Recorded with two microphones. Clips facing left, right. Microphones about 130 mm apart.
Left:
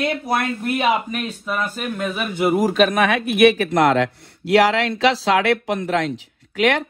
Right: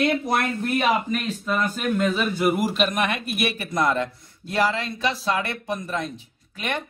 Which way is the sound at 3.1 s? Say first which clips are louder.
Left 11 dB; 75° left (ahead or behind).